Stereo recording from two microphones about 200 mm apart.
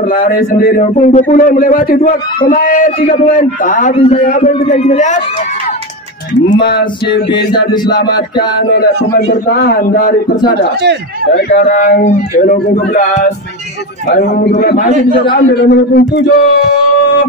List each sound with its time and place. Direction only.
0.1 s a man's voice: 45° left (ahead or behind)
6.6 s a man's voice: 50° left (ahead or behind)
7.1 s music: 20° left (ahead or behind)
8.5 s a man's voice: 55° left (ahead or behind)
11.5 s speech: 40° left (ahead or behind)
14.6 s a man's voice: 50° left (ahead or behind)